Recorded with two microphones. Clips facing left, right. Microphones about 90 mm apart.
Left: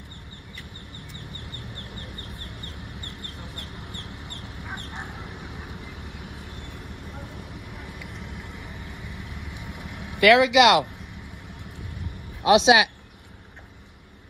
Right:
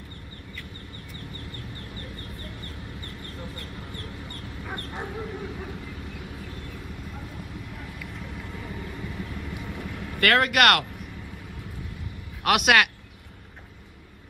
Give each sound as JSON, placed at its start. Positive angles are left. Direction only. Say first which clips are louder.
{"t": 4.0, "sound": "chicken", "louder": "right 2 dB", "side_deg": 20}
{"t": 4.4, "sound": "a sound", "louder": "right 1 dB", "side_deg": 20}
{"t": 7.8, "sound": "vehicle", "louder": "right 1 dB", "side_deg": 20}
{"t": 10.2, "sound": "speech", "louder": "left 5 dB", "side_deg": -55}
{"t": 12.4, "sound": "speech", "louder": "left 4 dB", "side_deg": -70}